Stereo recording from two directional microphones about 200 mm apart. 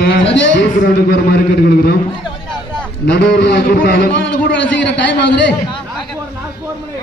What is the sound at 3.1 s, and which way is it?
A man's voice, 60° left (ahead or behind).